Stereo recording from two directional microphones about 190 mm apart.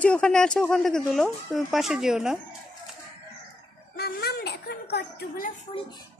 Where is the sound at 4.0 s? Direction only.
55° left (ahead or behind).